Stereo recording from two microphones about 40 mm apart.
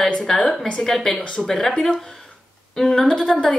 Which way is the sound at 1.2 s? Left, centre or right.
Left.